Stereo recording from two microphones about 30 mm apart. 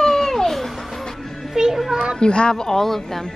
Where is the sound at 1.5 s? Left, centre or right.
Centre.